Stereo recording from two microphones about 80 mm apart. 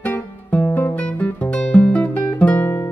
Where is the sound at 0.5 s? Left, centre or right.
Left.